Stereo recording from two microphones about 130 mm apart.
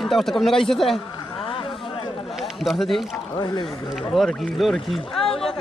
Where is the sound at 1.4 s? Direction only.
40° left (ahead or behind).